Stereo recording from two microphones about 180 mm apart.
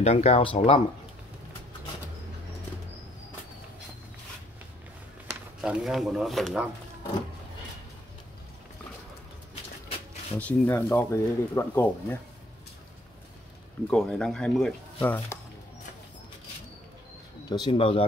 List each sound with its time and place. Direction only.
0.0 s speech: 35° left (ahead or behind)
5.6 s speech: centre (ahead or behind)
10.3 s speech: 10° left (ahead or behind)
13.8 s speech: 5° left (ahead or behind)
17.5 s speech: 25° left (ahead or behind)